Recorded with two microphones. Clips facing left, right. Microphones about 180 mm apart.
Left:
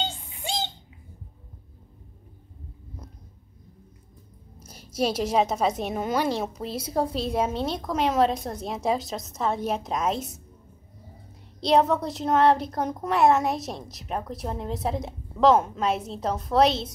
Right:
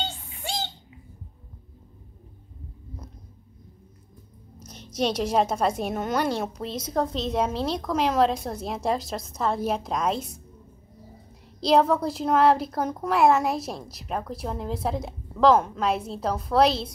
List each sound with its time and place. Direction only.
0.0 s a sound: 20° left (ahead or behind)
4.6 s a woman's voice: 5° left (ahead or behind)
11.6 s a woman's voice: centre (ahead or behind)